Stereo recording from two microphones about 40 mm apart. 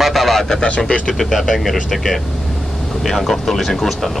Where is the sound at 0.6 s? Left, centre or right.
Left.